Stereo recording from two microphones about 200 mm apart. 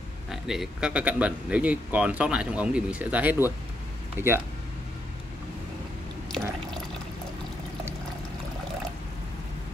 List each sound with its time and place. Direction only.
0.3 s speech: centre (ahead or behind)